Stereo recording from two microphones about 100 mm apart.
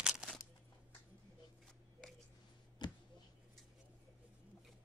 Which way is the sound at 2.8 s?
45° left (ahead or behind).